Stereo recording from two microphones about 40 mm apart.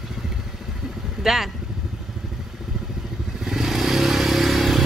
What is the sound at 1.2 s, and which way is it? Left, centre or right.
Vehicle, centre.